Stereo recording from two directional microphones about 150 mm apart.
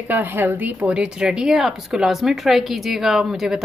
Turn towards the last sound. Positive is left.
turn(degrees=-5)  # may be behind; listen again after turning